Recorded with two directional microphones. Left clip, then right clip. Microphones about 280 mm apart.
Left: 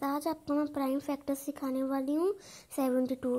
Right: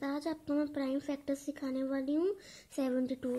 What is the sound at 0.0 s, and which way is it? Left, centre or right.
Speech, centre.